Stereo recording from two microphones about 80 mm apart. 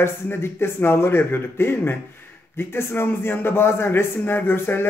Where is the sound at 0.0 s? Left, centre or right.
Left.